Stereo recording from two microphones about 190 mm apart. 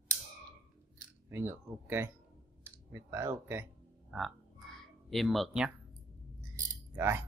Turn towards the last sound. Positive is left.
turn(degrees=-15)  # may be behind; listen again after turning